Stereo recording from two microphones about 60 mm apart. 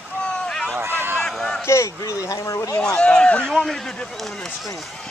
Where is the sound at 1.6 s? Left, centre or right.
Left.